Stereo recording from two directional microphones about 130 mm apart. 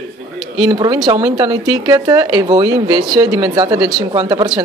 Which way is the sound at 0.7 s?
30° right (ahead or behind).